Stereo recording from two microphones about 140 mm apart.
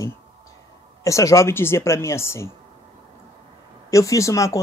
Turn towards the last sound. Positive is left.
turn(degrees=20)  # may be behind; listen again after turning